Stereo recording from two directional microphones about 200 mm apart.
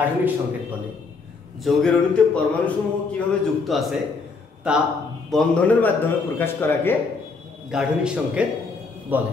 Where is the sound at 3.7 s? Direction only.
Centre (ahead or behind).